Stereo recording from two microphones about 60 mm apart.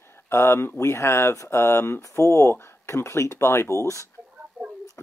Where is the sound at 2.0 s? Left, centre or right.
Left.